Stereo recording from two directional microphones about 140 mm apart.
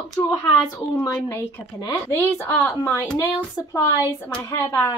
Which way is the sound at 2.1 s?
15° left (ahead or behind).